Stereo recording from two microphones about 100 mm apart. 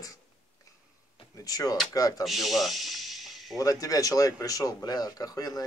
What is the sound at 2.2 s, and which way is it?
Speech, centre (ahead or behind).